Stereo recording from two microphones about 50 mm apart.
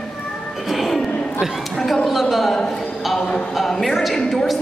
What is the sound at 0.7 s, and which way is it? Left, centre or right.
A woman's voice, centre.